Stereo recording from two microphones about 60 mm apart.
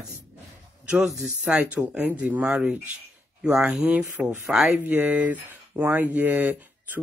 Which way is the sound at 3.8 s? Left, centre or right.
Right.